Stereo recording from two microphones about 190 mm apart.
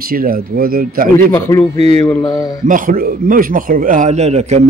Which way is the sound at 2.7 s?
45° right (ahead or behind).